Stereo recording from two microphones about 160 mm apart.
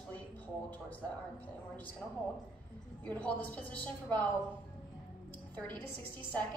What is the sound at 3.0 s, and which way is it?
A woman's voice, 10° left (ahead or behind).